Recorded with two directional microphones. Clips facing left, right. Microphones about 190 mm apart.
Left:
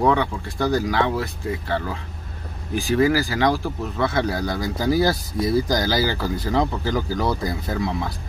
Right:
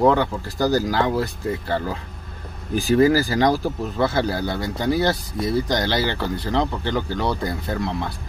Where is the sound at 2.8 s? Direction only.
40° right (ahead or behind).